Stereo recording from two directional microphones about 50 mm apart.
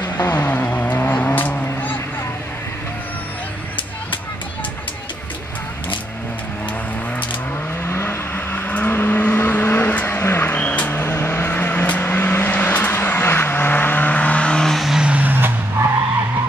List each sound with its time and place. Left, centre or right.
0.3 s vehicle: left
7.8 s vehicle: left
8.5 s vehicle: left
8.9 s vehicle: left
9.2 s vehicle: left
10.2 s vehicle: left
10.5 s vehicle: left
11.0 s vehicle: left
13.2 s vehicle: left
14.6 s vehicle: centre
15.0 s vehicle: right
15.8 s vehicle: right